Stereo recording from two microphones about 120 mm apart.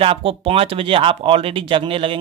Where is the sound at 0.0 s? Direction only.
50° right (ahead or behind).